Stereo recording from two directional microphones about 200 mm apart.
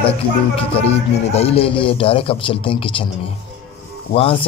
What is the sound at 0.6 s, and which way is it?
A man's voice, 30° left (ahead or behind).